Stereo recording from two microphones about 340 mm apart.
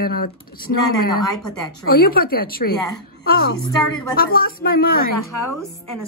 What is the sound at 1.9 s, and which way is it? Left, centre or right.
Speech, left.